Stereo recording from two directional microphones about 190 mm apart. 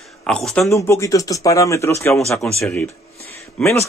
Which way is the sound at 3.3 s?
15° left (ahead or behind).